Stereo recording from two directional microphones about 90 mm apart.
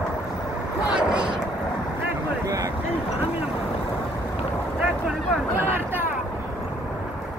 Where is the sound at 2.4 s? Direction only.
35° right (ahead or behind).